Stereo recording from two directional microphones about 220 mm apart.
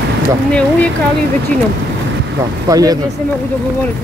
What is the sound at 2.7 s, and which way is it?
Speech, 15° right (ahead or behind).